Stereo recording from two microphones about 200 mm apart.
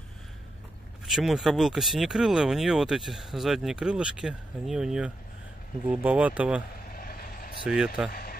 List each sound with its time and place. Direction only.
1.0 s speech: centre (ahead or behind)
6.9 s vehicle: 45° left (ahead or behind)
7.6 s speech: 5° right (ahead or behind)
8.1 s a sound: 45° left (ahead or behind)